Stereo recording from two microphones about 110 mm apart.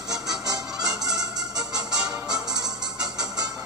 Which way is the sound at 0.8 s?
5° right (ahead or behind).